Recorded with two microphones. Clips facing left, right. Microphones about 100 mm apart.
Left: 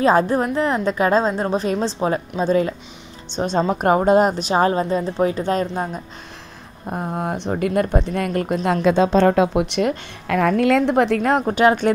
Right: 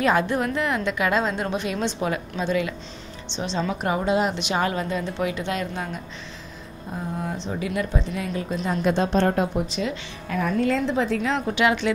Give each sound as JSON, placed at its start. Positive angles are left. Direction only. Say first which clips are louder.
{"t": 0.0, "sound": "a woman's voice", "louder": "left 5 dB", "side_deg": 35}
{"t": 6.9, "sound": "a woman's voice", "louder": "left 6 dB", "side_deg": 60}
{"t": 9.3, "sound": "a woman's voice", "louder": "left 6 dB", "side_deg": 90}